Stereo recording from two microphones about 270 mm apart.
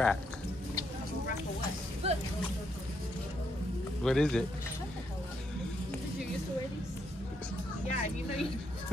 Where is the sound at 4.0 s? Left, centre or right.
Centre.